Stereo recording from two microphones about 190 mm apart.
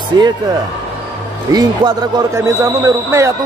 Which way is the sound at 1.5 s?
20° right (ahead or behind).